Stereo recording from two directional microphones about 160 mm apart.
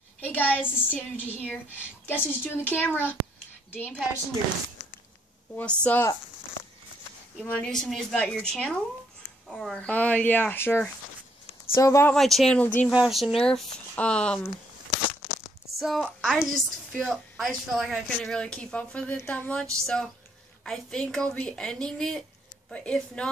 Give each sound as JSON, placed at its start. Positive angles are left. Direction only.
{"t": 0.2, "sound": "a woman's voice", "side_deg": 10}
{"t": 5.5, "sound": "speech", "side_deg": 5}
{"t": 7.4, "sound": "a woman's voice", "side_deg": 10}
{"t": 12.1, "sound": "a woman's voice", "side_deg": 0}
{"t": 12.8, "sound": "a woman's voice", "side_deg": 0}
{"t": 15.8, "sound": "a woman's voice", "side_deg": 0}